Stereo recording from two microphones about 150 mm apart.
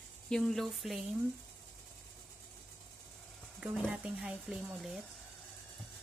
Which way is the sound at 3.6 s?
10° right (ahead or behind).